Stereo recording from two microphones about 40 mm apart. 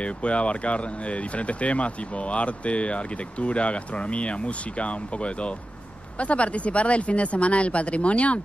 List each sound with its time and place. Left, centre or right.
0.0 s speech: left